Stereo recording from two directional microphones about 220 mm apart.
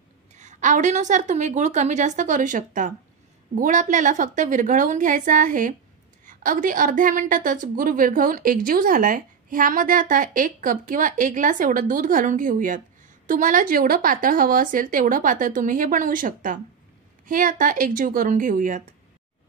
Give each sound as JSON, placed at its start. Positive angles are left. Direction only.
{"t": 0.4, "sound": "a woman's voice", "side_deg": -35}